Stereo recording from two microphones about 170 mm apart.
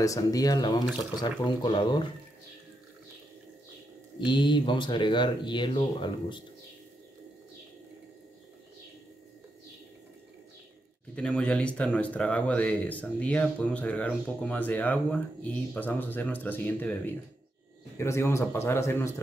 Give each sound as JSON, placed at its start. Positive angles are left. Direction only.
{"t": 0.0, "sound": "speech", "side_deg": 20}
{"t": 4.3, "sound": "speech", "side_deg": 30}
{"t": 11.1, "sound": "speech", "side_deg": 5}